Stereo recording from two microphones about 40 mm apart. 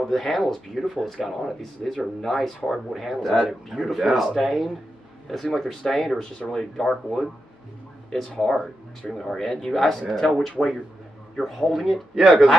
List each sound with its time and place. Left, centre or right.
0.0 s speech: centre
1.8 s speech: left
2.2 s speech: centre
5.3 s speech: centre
8.4 s speech: centre
12.2 s speech: centre